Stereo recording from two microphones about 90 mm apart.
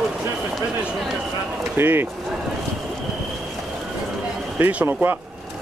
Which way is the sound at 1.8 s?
25° right (ahead or behind).